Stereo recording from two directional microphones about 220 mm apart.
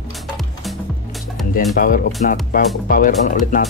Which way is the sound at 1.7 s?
40° left (ahead or behind).